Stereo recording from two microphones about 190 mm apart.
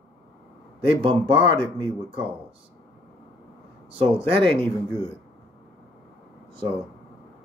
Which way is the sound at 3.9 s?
30° right (ahead or behind).